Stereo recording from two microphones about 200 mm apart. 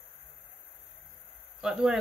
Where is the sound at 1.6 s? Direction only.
Centre (ahead or behind).